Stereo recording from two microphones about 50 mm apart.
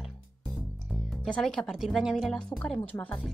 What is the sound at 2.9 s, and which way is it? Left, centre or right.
Speech, left.